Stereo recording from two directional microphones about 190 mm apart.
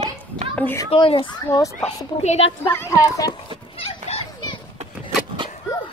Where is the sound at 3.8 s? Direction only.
30° left (ahead or behind).